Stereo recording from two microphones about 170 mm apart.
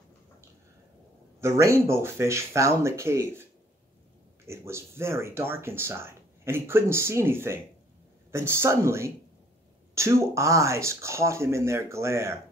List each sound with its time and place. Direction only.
1.4 s speech: 15° right (ahead or behind)
4.5 s speech: 15° right (ahead or behind)